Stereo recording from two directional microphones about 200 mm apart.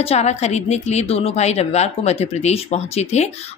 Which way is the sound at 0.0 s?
35° left (ahead or behind).